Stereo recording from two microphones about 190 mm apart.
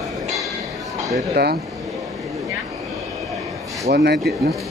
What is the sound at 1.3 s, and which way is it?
Speech, 55° right (ahead or behind).